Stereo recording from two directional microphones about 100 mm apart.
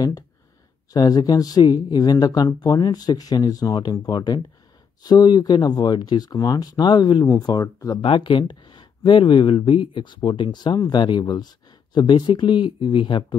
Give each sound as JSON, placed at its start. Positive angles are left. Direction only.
{"t": 0.9, "sound": "speech", "side_deg": 40}
{"t": 8.0, "sound": "speech", "side_deg": 55}